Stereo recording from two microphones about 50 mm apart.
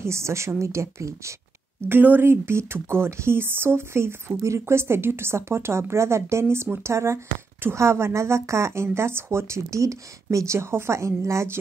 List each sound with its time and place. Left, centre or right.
0.0 s speech: right
1.9 s speech: right
3.1 s speech: right
3.3 s a woman's voice: right
6.4 s a woman's voice: right